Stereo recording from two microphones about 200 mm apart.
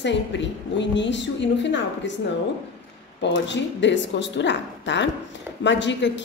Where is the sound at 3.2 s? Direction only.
65° left (ahead or behind).